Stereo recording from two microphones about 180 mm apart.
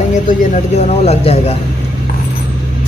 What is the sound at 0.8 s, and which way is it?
Speech, 35° left (ahead or behind).